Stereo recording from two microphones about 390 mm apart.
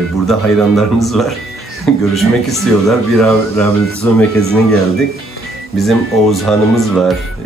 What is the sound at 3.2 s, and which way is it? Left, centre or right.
Speech, centre.